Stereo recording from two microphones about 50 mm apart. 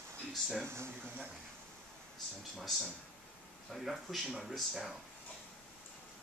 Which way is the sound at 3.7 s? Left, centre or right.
Centre.